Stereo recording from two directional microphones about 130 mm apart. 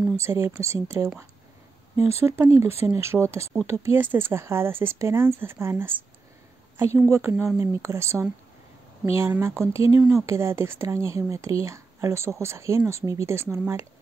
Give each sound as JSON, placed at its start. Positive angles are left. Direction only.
{"t": 0.6, "sound": "speech", "side_deg": -20}